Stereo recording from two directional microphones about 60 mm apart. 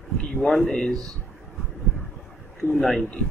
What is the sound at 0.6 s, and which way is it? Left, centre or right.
Speech, centre.